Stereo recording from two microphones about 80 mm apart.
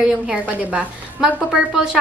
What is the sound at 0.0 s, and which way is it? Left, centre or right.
A woman's voice, centre.